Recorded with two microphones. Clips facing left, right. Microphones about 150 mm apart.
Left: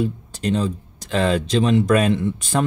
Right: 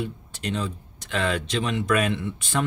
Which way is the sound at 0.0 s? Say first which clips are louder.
Left 8 dB; 35° left (ahead or behind).